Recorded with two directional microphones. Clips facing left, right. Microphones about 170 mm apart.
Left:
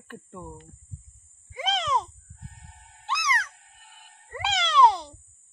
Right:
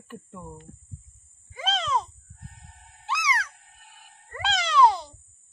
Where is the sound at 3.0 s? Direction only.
10° right (ahead or behind).